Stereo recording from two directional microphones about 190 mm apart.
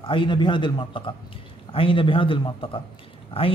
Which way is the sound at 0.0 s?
25° left (ahead or behind).